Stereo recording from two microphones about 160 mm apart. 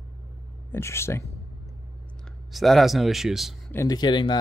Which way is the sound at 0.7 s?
15° left (ahead or behind).